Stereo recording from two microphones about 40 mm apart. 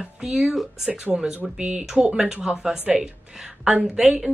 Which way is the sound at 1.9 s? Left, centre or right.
Centre.